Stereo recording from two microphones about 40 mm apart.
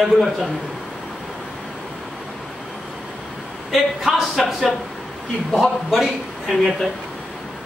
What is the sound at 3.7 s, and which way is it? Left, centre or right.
Speech, centre.